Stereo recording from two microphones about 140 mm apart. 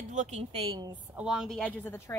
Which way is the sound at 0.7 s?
30° right (ahead or behind).